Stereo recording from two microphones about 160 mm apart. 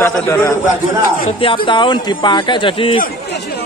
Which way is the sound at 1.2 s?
35° left (ahead or behind).